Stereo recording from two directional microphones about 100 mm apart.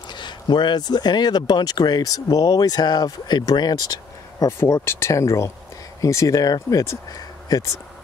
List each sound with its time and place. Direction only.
0.1 s speech: 50° left (ahead or behind)
4.6 s speech: 25° left (ahead or behind)